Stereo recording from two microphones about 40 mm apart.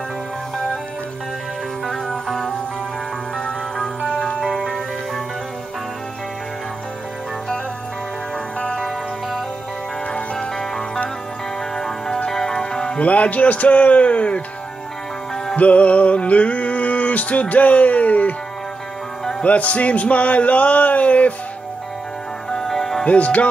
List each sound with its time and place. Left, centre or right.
1.9 s music: centre
4.4 s music: centre
11.7 s music: centre
13.0 s music: left
15.5 s music: left
19.4 s music: left
22.5 s music: centre
23.0 s music: left